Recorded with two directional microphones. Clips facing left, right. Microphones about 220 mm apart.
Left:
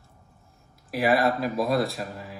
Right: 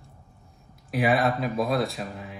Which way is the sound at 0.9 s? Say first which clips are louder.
Left 1 dB; centre (ahead or behind).